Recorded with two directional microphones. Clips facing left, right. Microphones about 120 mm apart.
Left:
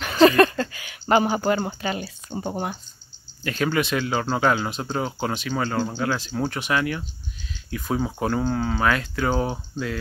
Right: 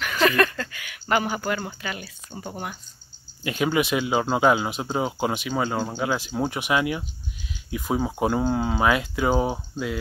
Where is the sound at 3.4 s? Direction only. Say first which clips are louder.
Right 1 dB; 15° right (ahead or behind).